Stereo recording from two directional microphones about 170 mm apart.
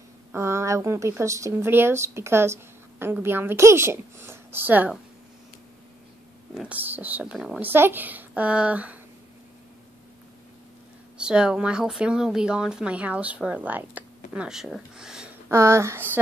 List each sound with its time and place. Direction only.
0.3 s speech: 15° right (ahead or behind)
6.5 s speech: 5° right (ahead or behind)
11.1 s speech: 5° right (ahead or behind)
15.5 s speech: 15° right (ahead or behind)